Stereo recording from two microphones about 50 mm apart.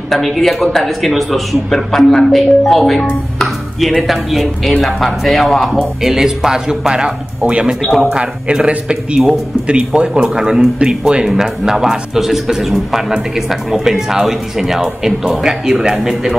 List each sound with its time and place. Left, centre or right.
0.1 s speech: centre
6.0 s a man's voice: centre